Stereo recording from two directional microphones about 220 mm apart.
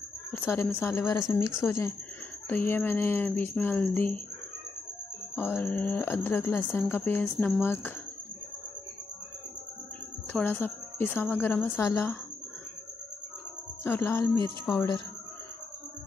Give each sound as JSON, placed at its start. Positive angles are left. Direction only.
{"t": 0.3, "sound": "speech", "side_deg": 10}
{"t": 5.3, "sound": "speech", "side_deg": 10}
{"t": 10.3, "sound": "speech", "side_deg": 10}
{"t": 13.8, "sound": "speech", "side_deg": 10}